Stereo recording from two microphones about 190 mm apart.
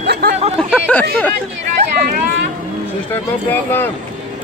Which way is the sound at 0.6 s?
5° left (ahead or behind).